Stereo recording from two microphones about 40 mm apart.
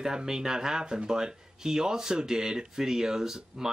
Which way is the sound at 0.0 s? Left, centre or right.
Centre.